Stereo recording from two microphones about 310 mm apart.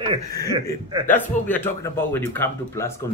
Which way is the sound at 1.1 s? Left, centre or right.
Centre.